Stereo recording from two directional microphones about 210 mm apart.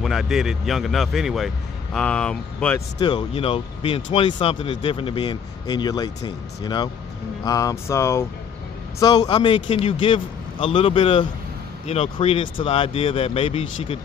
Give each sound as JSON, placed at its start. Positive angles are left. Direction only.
{"t": 0.0, "sound": "speech", "side_deg": 0}
{"t": 3.0, "sound": "speech", "side_deg": 20}